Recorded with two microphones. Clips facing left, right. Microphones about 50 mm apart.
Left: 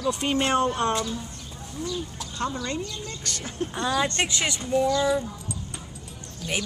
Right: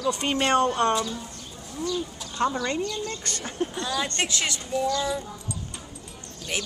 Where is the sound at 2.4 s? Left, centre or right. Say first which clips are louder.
Right 5 dB; right.